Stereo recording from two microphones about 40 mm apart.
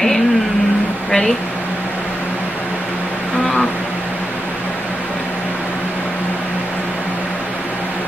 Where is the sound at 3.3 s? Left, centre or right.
Left.